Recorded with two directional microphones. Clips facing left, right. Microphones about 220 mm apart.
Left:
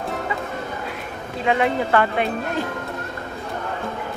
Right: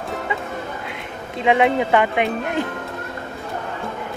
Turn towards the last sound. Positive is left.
turn(degrees=-15)  # may be behind; listen again after turning